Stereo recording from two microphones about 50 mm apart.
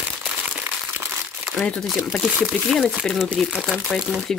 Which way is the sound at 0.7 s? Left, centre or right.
Right.